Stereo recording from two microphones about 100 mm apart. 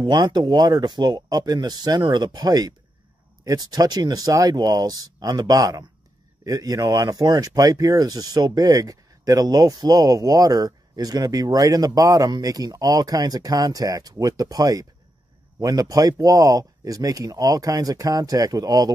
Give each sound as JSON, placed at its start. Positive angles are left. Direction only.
{"t": 0.0, "sound": "speech", "side_deg": -45}